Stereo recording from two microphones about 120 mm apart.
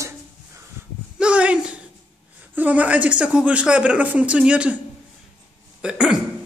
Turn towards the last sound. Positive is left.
turn(degrees=-10)  # may be behind; listen again after turning